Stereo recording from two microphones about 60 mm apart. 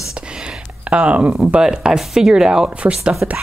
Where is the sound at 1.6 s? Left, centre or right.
Centre.